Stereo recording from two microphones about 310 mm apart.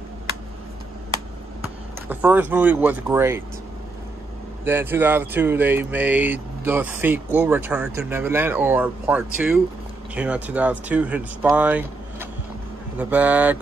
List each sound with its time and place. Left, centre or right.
2.0 s speech: centre
4.6 s speech: centre